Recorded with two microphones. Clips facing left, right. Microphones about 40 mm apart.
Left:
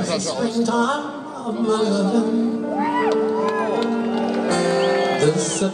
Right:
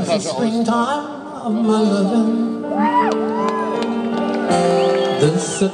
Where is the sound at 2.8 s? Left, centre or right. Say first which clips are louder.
Right 3 dB; right.